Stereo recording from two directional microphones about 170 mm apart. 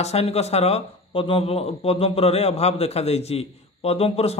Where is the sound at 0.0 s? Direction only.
40° left (ahead or behind).